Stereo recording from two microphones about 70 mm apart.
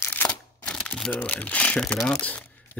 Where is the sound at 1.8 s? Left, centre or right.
Centre.